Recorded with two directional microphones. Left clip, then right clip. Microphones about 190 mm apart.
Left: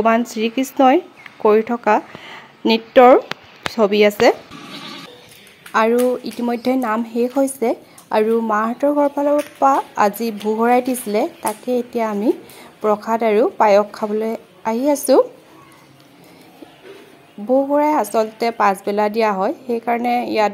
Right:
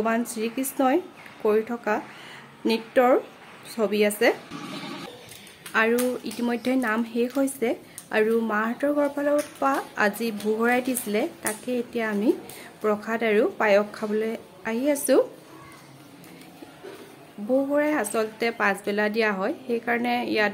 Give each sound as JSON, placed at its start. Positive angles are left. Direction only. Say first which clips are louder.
{"t": 0.0, "sound": "a woman's voice", "louder": "left 9 dB", "side_deg": 25}
{"t": 5.7, "sound": "a woman's voice", "louder": "left 7 dB", "side_deg": 25}
{"t": 17.7, "sound": "a woman's voice", "louder": "left 8 dB", "side_deg": 20}